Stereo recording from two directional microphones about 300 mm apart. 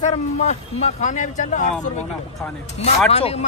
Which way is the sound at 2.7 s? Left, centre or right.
Left.